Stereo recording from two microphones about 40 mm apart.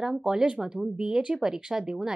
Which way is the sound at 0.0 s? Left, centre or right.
Centre.